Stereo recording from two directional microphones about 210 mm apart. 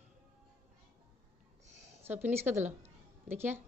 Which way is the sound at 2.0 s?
10° right (ahead or behind).